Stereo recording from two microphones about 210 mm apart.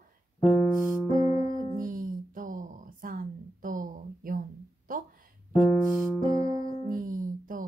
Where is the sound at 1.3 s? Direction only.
35° left (ahead or behind).